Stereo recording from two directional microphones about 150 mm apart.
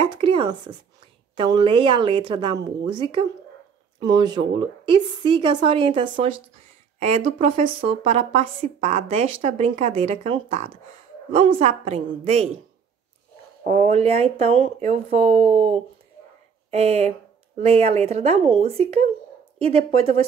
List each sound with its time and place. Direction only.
0.0 s a sound: 35° right (ahead or behind)
1.3 s a woman's voice: 35° right (ahead or behind)
7.0 s a woman's voice: 45° right (ahead or behind)
13.7 s a woman's voice: 50° right (ahead or behind)